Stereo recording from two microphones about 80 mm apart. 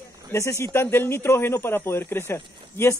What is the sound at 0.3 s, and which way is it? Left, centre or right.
A man's voice, left.